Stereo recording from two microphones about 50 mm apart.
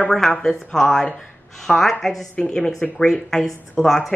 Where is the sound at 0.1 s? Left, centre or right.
Centre.